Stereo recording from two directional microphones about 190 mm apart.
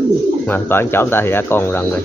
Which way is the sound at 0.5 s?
10° left (ahead or behind).